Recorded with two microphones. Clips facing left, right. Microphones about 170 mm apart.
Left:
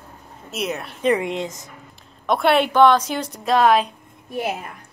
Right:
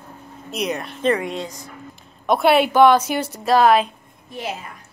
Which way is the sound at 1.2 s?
20° left (ahead or behind).